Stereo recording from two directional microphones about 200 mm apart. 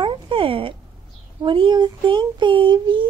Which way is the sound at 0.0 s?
25° right (ahead or behind).